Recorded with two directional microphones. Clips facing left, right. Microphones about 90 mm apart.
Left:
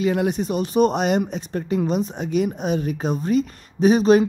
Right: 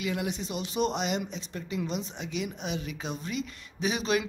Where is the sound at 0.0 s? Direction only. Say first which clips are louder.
Left 11 dB; 45° left (ahead or behind).